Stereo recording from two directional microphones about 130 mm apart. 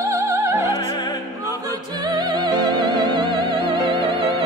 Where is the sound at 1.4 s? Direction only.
30° right (ahead or behind).